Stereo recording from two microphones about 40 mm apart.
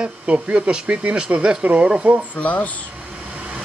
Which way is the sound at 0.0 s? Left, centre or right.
Right.